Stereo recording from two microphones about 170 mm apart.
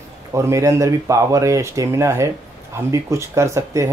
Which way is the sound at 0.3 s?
20° right (ahead or behind).